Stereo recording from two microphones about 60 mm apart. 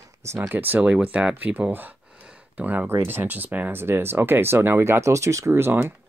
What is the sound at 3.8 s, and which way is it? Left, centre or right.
Speech, right.